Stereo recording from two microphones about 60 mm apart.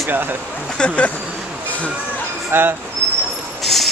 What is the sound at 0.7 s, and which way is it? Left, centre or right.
Speech, centre.